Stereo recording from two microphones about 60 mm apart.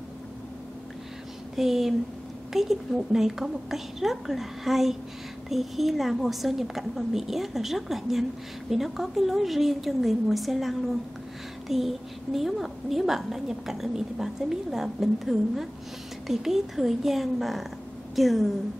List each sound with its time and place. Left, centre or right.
1.5 s a woman's voice: centre